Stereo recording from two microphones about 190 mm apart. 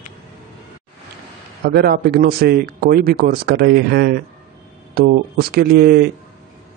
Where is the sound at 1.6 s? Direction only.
55° right (ahead or behind).